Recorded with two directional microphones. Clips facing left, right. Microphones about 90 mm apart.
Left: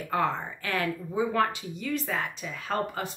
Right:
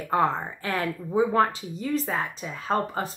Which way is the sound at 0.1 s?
30° right (ahead or behind).